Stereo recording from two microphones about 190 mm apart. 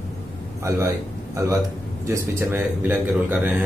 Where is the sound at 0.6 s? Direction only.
15° right (ahead or behind).